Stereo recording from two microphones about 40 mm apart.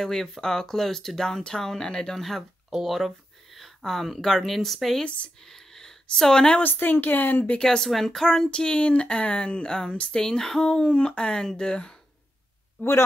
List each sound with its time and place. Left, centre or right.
0.0 s speech: centre
2.7 s speech: centre
3.5 s a sound: centre
4.2 s speech: centre
5.0 s speech: left
5.4 s a sound: centre
6.1 s speech: centre
6.6 s speech: left
7.5 s speech: centre
8.5 s speech: left
10.2 s speech: centre
10.7 s speech: left